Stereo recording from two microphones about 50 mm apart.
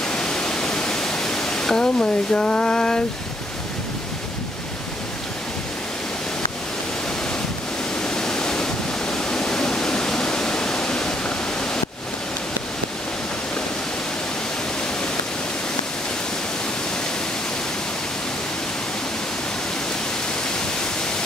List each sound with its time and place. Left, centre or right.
0.0 s pink noise: centre
2.0 s a sound: centre
8.0 s waterfall: centre